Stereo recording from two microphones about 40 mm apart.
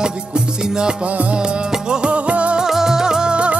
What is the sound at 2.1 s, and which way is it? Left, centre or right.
Music, right.